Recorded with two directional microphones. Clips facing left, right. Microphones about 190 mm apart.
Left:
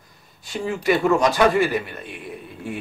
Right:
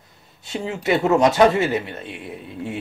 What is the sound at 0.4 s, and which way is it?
A man's voice, 25° right (ahead or behind).